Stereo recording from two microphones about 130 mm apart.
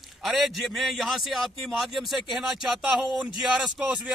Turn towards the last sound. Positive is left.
turn(degrees=0)  # may be behind; listen again after turning